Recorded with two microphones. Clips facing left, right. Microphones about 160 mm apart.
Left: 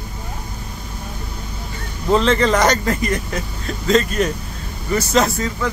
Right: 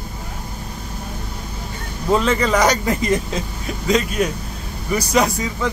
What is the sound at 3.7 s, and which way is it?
Speech, 10° right (ahead or behind).